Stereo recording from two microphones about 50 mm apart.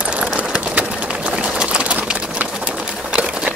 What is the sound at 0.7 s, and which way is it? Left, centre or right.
Pigeon, right.